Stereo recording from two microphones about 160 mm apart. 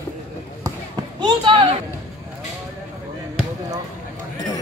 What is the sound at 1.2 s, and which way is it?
Basketball bounce, 30° right (ahead or behind).